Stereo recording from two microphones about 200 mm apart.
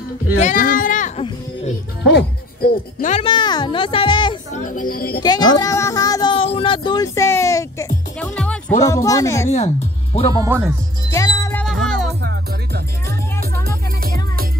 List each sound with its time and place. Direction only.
0.4 s a sound: 40° left (ahead or behind)
2.0 s music: 55° left (ahead or behind)
3.0 s speech: 35° left (ahead or behind)
4.5 s speech: 40° left (ahead or behind)
5.2 s speech: 20° left (ahead or behind)
5.6 s a sound: 15° left (ahead or behind)
8.4 s music: 5° left (ahead or behind)
8.8 s speech: 15° left (ahead or behind)
10.3 s speech: 15° right (ahead or behind)
11.1 s music: 15° left (ahead or behind)
11.6 s music: centre (ahead or behind)
12.2 s music: 60° right (ahead or behind)
13.7 s music: 50° right (ahead or behind)